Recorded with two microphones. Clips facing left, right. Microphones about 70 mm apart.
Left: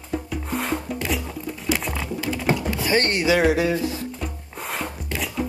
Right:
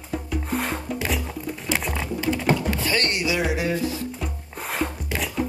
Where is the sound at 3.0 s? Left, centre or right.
Left.